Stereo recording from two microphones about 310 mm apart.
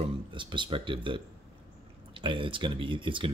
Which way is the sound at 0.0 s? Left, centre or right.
Centre.